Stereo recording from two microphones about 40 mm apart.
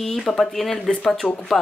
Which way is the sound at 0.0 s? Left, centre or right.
Centre.